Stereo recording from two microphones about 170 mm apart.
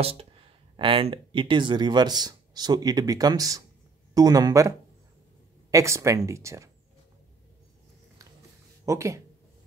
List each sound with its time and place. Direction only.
0.0 s speech: 35° right (ahead or behind); by 6.7 s 15° right (ahead or behind)
8.8 s speech: 15° right (ahead or behind)